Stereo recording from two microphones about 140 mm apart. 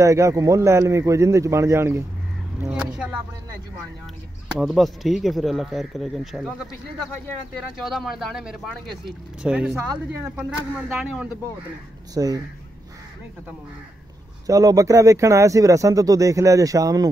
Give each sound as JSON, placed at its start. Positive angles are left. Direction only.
{"t": 0.0, "sound": "speech", "side_deg": -20}
{"t": 2.6, "sound": "speech", "side_deg": -5}
{"t": 4.6, "sound": "speech", "side_deg": 0}
{"t": 7.7, "sound": "speech", "side_deg": 0}
{"t": 12.1, "sound": "speech", "side_deg": -25}
{"t": 14.4, "sound": "speech", "side_deg": -25}